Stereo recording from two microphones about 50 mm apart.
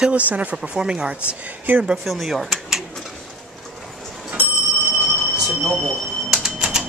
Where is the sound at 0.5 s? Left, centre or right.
Centre.